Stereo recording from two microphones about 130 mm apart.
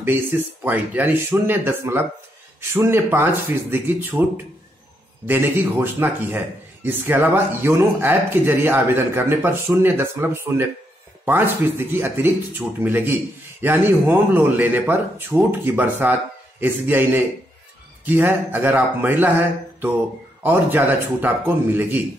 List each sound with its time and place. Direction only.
0.0 s speech: 15° right (ahead or behind)
20.4 s speech: 15° right (ahead or behind)